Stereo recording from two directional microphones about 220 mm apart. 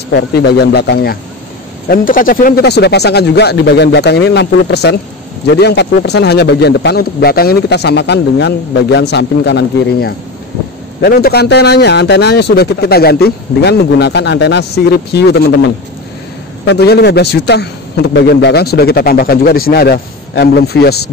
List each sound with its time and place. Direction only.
0.1 s a man's voice: 50° left (ahead or behind)